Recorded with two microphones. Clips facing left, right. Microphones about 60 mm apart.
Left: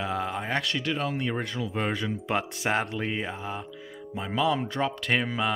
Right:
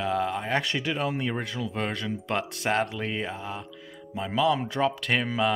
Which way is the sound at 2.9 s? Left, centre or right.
Centre.